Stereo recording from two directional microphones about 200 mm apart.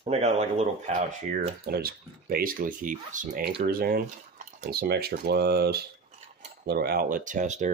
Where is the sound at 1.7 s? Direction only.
50° right (ahead or behind).